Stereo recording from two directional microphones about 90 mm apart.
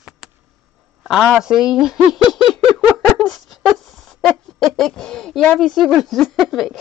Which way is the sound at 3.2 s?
Centre (ahead or behind).